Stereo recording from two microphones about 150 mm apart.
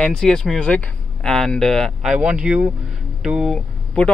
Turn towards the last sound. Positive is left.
turn(degrees=5)  # may be behind; listen again after turning